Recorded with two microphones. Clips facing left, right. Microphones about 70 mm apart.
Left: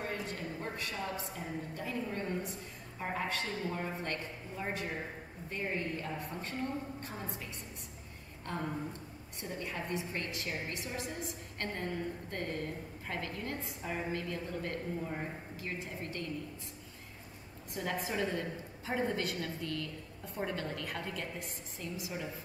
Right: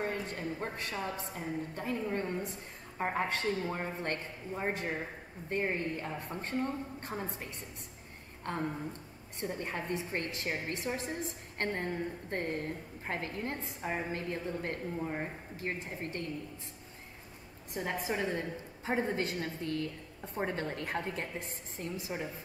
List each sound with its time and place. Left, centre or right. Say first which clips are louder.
0.0 s a woman's voice: right 3 dB; right
8.5 s a woman's voice: right 2 dB; right
17.7 s a woman's voice: right 1 dB; right